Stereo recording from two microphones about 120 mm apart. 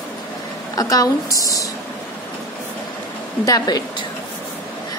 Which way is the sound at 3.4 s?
35° left (ahead or behind).